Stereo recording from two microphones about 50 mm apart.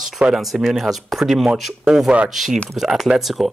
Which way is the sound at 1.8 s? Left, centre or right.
Centre.